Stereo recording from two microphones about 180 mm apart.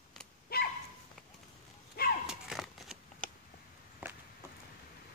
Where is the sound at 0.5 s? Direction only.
60° left (ahead or behind).